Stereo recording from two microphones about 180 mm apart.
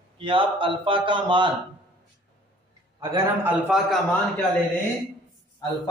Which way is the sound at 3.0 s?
20° right (ahead or behind).